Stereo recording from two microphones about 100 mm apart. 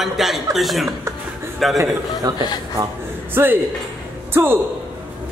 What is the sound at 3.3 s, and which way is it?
A man's voice, 20° right (ahead or behind).